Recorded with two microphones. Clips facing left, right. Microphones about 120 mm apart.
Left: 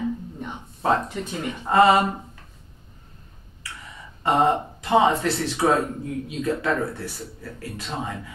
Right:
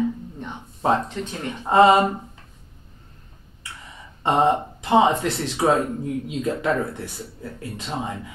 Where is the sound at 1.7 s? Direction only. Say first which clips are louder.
Right 2 dB; 20° right (ahead or behind).